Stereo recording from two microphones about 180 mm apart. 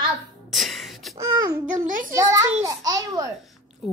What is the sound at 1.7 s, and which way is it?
Speech, 45° right (ahead or behind).